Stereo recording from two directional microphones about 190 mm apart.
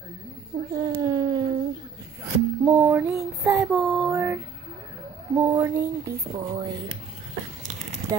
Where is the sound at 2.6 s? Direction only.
10° right (ahead or behind).